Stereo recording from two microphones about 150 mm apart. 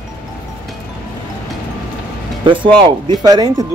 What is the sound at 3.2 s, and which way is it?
Speech, 25° right (ahead or behind).